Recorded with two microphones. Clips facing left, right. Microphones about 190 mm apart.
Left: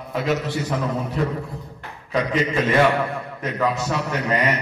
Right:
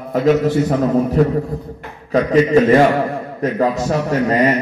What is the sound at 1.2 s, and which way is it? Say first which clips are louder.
A man's voice: right 9 dB; 45° right (ahead or behind).